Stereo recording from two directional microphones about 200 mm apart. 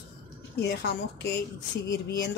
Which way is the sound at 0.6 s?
55° left (ahead or behind).